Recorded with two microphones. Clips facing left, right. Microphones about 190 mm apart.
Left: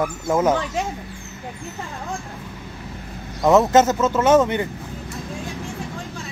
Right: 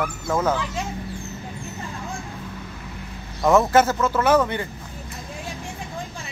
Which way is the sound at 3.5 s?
20° left (ahead or behind).